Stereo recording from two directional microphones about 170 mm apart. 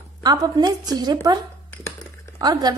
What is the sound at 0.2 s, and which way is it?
Speech, 25° right (ahead or behind).